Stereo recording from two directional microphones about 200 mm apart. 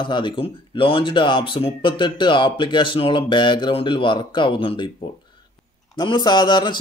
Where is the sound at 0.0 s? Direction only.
25° left (ahead or behind).